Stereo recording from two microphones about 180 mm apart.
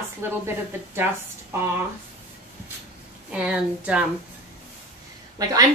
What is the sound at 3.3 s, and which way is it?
Speech, 5° right (ahead or behind).